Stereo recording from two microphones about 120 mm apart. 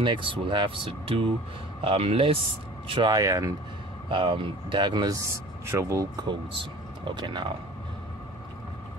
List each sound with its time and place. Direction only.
0.0 s speech: 45° right (ahead or behind)
3.2 s speech: 30° right (ahead or behind)
4.1 s speech: 45° right (ahead or behind); by 6.0 s 25° right (ahead or behind)
6.2 s speech: 45° right (ahead or behind)